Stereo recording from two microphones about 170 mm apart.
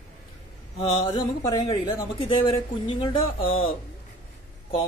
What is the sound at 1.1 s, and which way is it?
Speech, 25° left (ahead or behind).